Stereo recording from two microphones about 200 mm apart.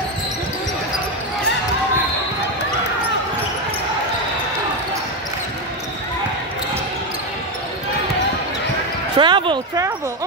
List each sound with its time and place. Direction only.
9.1 s basketball bounce: 25° right (ahead or behind)